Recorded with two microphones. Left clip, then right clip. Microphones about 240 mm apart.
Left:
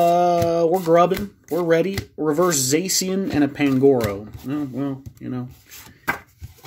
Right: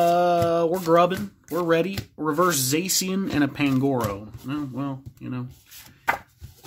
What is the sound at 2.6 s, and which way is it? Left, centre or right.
Speech, centre.